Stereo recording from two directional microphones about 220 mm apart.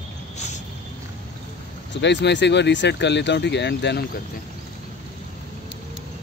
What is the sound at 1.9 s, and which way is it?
Speech, 50° left (ahead or behind).